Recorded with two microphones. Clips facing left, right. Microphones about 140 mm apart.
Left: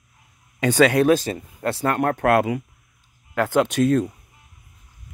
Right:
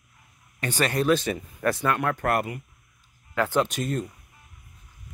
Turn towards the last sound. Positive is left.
turn(degrees=70)  # may be behind; listen again after turning